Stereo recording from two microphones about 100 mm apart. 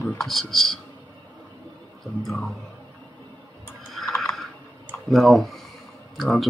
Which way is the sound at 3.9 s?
5° left (ahead or behind).